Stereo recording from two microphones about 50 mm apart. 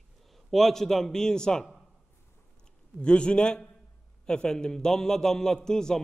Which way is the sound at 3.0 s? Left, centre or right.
Left.